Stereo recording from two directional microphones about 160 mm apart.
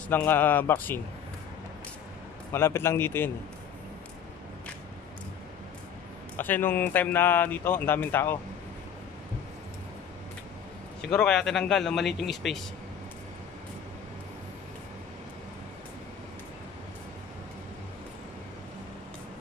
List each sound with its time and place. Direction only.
0.1 s speech: 10° left (ahead or behind)
2.5 s speech: 15° left (ahead or behind)
6.3 s speech: 10° left (ahead or behind)
11.0 s speech: 5° left (ahead or behind)